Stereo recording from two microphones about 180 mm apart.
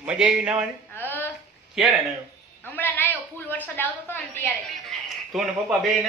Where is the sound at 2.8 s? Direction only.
10° left (ahead or behind).